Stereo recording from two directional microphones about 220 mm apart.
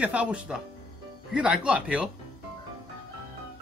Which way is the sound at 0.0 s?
5° right (ahead or behind).